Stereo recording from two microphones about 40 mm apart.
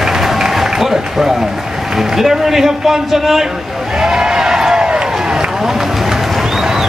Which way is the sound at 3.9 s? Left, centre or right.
Centre.